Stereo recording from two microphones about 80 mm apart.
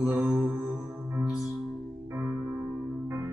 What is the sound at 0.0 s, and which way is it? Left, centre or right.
Mantra, centre.